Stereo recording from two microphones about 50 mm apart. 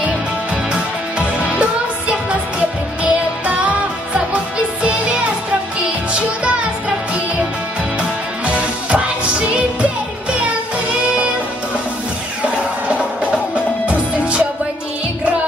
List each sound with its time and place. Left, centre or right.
1.4 s music: right
6.1 s music: right
8.0 s music: right
12.4 s music: right